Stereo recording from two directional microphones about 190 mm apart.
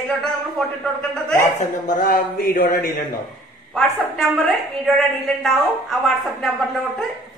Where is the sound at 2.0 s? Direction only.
50° left (ahead or behind).